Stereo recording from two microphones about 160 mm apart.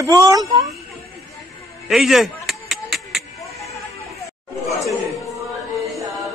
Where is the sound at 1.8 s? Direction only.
Centre (ahead or behind).